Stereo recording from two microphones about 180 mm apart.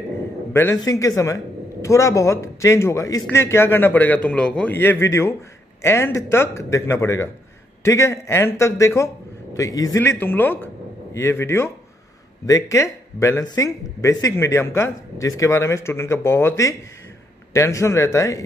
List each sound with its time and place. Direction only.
0.5 s a man's voice: 15° left (ahead or behind)